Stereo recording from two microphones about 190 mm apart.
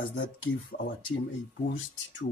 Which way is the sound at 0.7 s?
45° left (ahead or behind).